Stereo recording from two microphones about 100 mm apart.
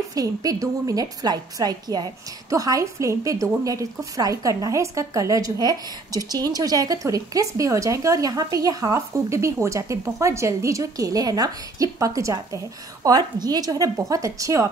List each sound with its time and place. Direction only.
0.1 s a woman's voice: 35° right (ahead or behind)